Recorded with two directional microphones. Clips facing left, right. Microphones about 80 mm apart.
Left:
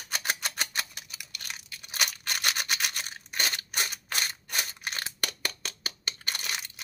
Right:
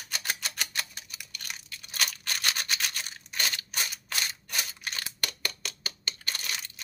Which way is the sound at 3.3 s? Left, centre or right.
Left.